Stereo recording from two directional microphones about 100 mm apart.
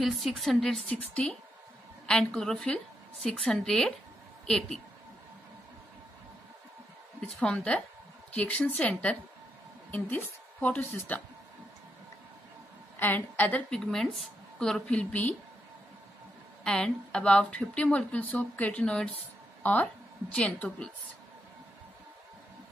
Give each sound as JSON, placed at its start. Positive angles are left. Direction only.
{"t": 0.0, "sound": "a woman's voice", "side_deg": 0}
{"t": 7.2, "sound": "a woman's voice", "side_deg": 10}
{"t": 13.0, "sound": "a woman's voice", "side_deg": 15}
{"t": 16.6, "sound": "a woman's voice", "side_deg": 10}